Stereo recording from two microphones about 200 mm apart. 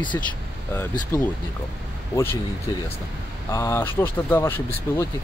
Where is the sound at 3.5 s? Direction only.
15° left (ahead or behind).